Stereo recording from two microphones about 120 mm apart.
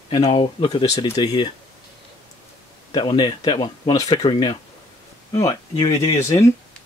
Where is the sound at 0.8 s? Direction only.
60° left (ahead or behind).